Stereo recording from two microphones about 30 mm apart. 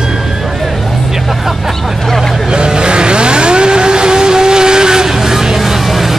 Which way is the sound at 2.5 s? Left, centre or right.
Right.